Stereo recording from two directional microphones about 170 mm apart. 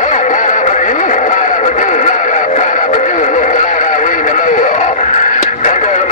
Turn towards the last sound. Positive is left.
turn(degrees=45)  # may be behind; listen again after turning